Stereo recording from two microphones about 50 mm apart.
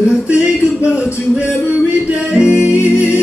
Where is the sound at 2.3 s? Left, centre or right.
Right.